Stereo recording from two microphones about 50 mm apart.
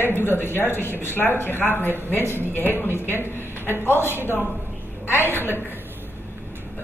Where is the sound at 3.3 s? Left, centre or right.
Left.